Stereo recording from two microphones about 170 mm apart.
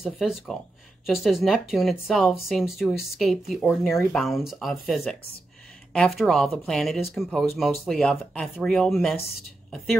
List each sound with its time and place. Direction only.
0.0 s speech: centre (ahead or behind)